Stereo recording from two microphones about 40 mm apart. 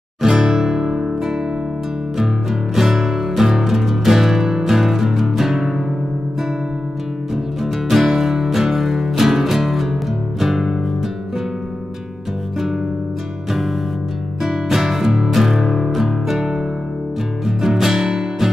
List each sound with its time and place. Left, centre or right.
0.2 s music: centre
2.7 s music: centre
7.6 s music: centre
14.4 s music: centre
17.5 s music: centre